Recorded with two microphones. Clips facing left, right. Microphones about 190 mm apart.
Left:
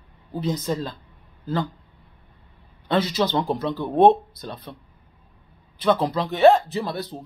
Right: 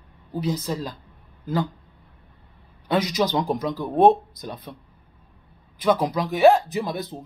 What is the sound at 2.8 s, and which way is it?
Speech, 10° right (ahead or behind).